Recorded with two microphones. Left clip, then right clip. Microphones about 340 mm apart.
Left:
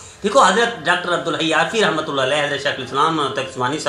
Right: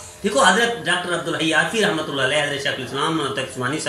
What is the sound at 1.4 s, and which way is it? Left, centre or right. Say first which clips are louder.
A woman's voice: left 1 dB; left.